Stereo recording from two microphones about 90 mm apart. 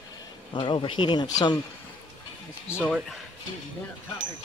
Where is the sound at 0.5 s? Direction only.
65° left (ahead or behind).